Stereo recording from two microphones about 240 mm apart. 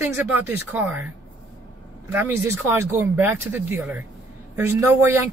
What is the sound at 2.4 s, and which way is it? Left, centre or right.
Speech, centre.